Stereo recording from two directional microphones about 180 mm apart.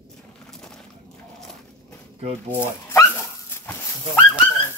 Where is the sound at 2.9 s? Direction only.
15° left (ahead or behind).